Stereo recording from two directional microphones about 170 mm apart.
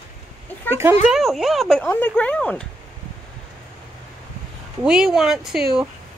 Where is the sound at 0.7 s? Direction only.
15° right (ahead or behind).